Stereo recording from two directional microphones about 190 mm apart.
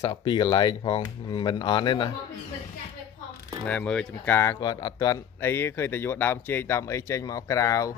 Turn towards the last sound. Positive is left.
turn(degrees=15)  # may be behind; listen again after turning